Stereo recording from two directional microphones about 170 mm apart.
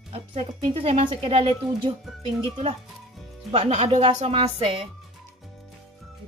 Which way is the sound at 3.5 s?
40° right (ahead or behind).